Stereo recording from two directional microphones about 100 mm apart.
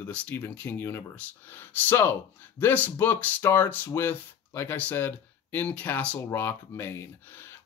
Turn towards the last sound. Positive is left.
turn(degrees=20)  # may be behind; listen again after turning